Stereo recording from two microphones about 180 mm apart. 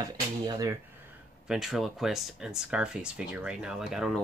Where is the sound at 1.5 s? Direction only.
Centre (ahead or behind).